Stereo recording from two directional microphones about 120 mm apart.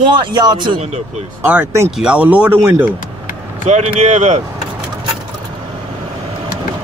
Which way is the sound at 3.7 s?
75° right (ahead or behind).